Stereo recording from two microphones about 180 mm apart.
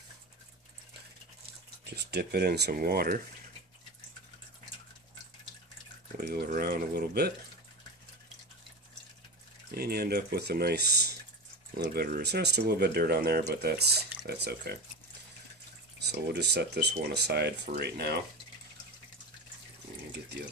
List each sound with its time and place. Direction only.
2.0 s speech: 65° right (ahead or behind)
6.1 s speech: 55° right (ahead or behind)
9.7 s speech: 60° right (ahead or behind)
16.1 s speech: 70° right (ahead or behind)